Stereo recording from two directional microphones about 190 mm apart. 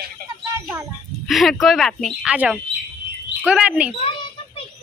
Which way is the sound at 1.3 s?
Centre (ahead or behind).